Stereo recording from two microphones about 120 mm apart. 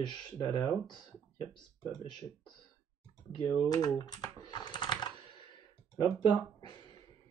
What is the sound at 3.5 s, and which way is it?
Speech, 30° left (ahead or behind).